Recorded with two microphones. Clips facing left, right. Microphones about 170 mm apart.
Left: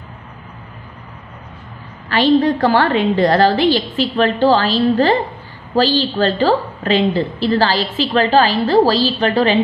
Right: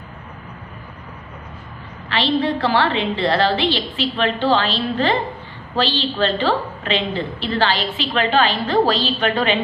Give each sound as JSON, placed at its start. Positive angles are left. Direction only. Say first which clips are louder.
{"t": 2.0, "sound": "a woman's voice", "louder": "left 6 dB", "side_deg": 45}